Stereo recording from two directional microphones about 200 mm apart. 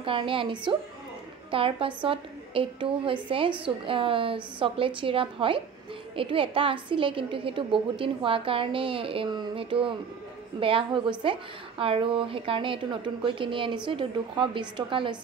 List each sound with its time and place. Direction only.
0.0 s a woman's voice: 25° right (ahead or behind)